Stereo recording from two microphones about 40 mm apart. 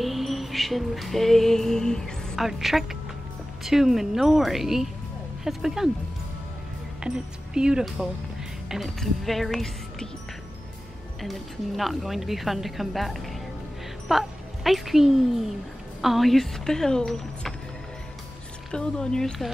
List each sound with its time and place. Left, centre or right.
0.0 s music: centre
2.4 s speech: centre
7.0 s speech: right
8.8 s a woman's voice: centre
11.1 s a woman's voice: centre
18.7 s speech: centre